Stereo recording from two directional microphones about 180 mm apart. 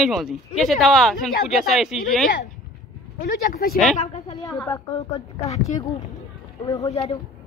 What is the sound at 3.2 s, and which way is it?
Speech, 55° left (ahead or behind).